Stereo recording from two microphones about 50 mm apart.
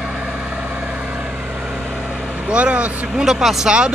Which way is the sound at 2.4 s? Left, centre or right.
Right.